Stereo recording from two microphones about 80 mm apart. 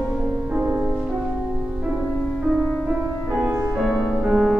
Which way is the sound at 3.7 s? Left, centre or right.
Centre.